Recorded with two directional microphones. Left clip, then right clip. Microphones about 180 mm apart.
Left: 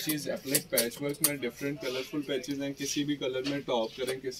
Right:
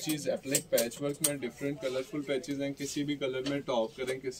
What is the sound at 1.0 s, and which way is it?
Speech, 15° right (ahead or behind).